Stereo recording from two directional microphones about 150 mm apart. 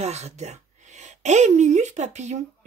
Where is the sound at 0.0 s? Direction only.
45° right (ahead or behind).